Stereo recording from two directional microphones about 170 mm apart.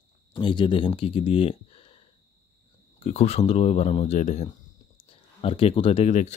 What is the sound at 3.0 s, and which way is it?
Speech, 40° left (ahead or behind).